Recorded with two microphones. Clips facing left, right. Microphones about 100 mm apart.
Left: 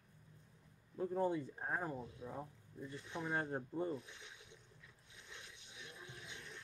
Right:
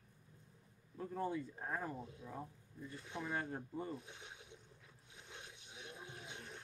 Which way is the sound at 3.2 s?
35° left (ahead or behind).